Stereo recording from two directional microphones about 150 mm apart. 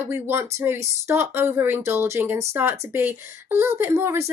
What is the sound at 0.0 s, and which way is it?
Speech, 15° right (ahead or behind).